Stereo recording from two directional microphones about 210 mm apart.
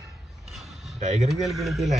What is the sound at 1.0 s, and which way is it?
Speech, 30° right (ahead or behind).